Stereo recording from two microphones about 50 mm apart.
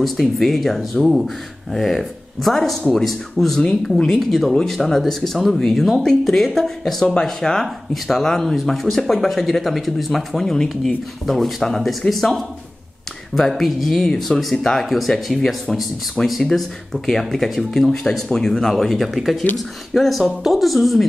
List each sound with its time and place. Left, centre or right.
0.0 s speech: centre
16.2 s speech: centre
16.5 s speech: centre